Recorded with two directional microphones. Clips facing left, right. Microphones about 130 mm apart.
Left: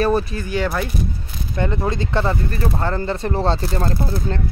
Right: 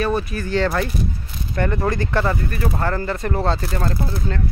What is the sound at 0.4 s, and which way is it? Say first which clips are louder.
Speech: right 2 dB; 15° left (ahead or behind).